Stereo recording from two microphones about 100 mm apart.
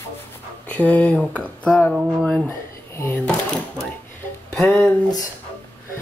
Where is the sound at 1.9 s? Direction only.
5° right (ahead or behind).